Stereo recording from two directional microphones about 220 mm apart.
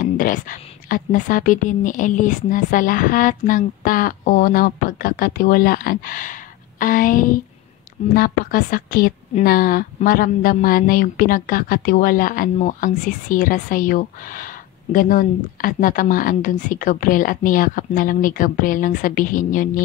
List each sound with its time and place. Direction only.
0.0 s a woman's voice: 40° left (ahead or behind)